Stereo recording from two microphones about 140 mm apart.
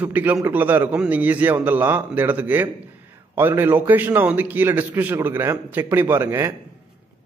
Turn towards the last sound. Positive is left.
turn(degrees=-20)  # may be behind; listen again after turning